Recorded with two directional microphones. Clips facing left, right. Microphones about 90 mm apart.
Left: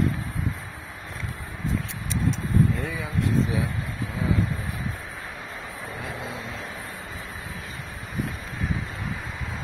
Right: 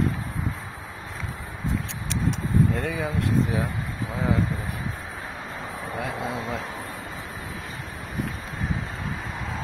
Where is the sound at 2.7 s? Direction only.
75° right (ahead or behind).